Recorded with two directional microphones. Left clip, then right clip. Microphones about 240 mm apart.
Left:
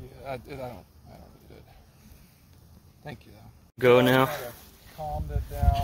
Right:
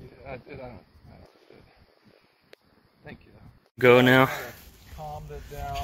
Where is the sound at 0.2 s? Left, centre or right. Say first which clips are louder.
Left 4 dB; left.